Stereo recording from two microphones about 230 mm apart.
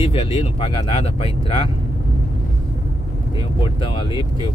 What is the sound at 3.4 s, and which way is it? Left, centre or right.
Speech, left.